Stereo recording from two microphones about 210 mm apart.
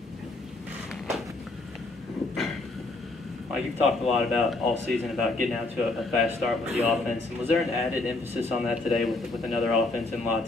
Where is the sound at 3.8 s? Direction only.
Centre (ahead or behind).